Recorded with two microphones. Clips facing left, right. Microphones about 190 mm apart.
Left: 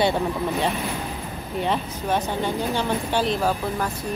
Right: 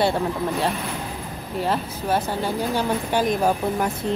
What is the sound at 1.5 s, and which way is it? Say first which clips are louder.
A woman's voice: right 1 dB; 5° right (ahead or behind).